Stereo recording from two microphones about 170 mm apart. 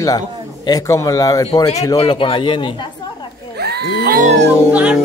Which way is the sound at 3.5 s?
70° right (ahead or behind).